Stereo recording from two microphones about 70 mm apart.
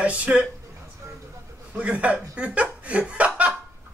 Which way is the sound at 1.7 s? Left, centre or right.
Centre.